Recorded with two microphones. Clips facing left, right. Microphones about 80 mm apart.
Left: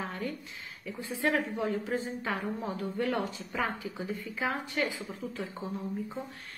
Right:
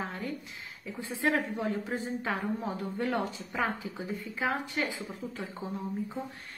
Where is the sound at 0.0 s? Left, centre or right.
Right.